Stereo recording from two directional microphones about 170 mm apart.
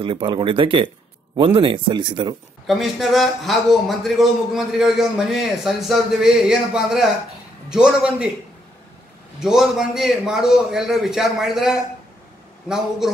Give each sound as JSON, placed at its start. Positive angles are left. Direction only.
{"t": 0.0, "sound": "speech", "side_deg": -30}
{"t": 2.6, "sound": "speech", "side_deg": 0}
{"t": 9.4, "sound": "speech", "side_deg": -5}